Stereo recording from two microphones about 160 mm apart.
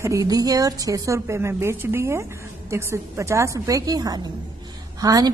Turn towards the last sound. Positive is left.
turn(degrees=-20)  # may be behind; listen again after turning